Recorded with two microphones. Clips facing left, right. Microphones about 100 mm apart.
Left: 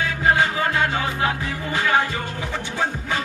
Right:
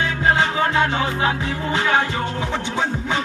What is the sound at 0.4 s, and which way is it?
Music, 20° right (ahead or behind).